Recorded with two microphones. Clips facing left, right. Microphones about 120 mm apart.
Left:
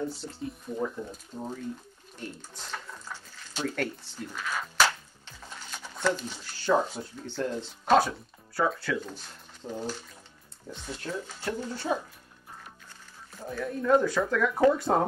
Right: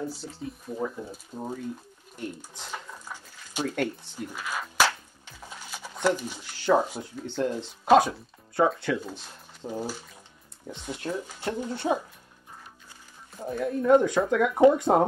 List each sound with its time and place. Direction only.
0.0 s speech: centre (ahead or behind)
2.7 s dishes: 15° right (ahead or behind)
8.6 s speech: 20° right (ahead or behind)
9.7 s speech: 10° right (ahead or behind)
13.5 s speech: 20° right (ahead or behind)